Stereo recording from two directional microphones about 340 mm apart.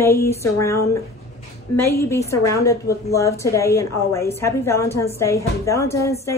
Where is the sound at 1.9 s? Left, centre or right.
Centre.